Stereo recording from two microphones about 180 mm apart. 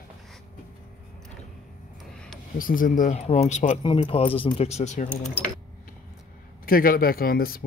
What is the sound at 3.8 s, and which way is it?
Speech, 30° left (ahead or behind).